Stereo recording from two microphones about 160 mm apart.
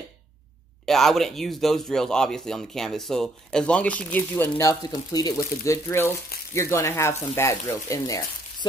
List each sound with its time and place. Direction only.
0.8 s speech: centre (ahead or behind); by 8.2 s 20° left (ahead or behind)